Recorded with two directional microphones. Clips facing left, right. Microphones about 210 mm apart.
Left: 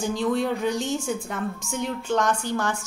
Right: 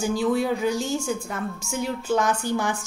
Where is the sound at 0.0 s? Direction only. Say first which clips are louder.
Right 1 dB; 5° right (ahead or behind).